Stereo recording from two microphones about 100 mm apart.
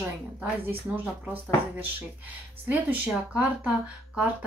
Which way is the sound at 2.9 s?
15° right (ahead or behind).